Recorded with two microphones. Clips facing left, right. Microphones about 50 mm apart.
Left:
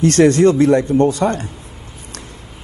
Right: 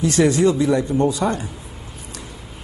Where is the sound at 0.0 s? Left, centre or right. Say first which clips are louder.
Left 5 dB; left.